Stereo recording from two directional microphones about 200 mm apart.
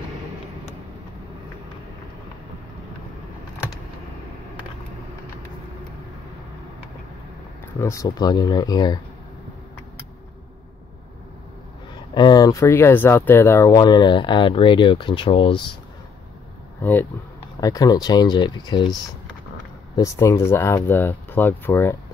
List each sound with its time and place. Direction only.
7.8 s speech: 15° left (ahead or behind)
12.1 s speech: 20° left (ahead or behind)
16.8 s speech: 10° left (ahead or behind)
20.0 s speech: 15° left (ahead or behind)